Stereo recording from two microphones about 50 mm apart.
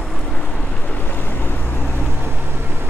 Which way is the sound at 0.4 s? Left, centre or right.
Left.